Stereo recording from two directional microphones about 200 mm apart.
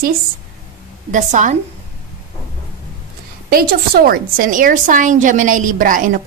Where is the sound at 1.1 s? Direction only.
40° right (ahead or behind).